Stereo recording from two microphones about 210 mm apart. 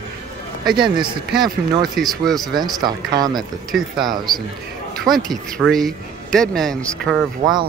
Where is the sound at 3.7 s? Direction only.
Centre (ahead or behind).